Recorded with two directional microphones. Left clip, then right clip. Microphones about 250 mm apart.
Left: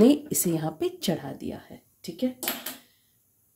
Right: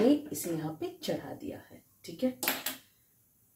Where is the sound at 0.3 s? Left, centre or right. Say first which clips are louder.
Left 8 dB; left.